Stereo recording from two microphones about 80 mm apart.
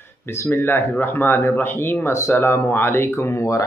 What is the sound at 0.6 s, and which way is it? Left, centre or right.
Speech, left.